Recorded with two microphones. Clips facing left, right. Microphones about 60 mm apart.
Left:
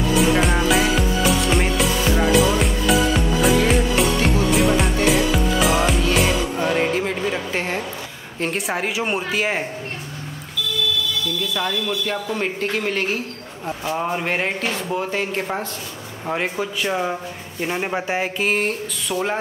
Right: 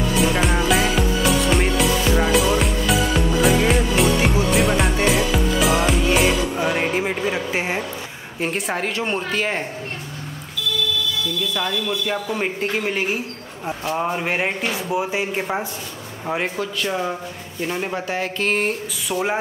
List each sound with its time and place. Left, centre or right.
0.2 s music: centre
6.6 s speech: centre
8.4 s speech: centre
11.4 s speech: centre
16.3 s a sound: centre
16.5 s speech: centre
18.4 s a sound: centre